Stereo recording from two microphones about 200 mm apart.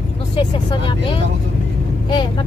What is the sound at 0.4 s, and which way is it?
Speech, 25° left (ahead or behind).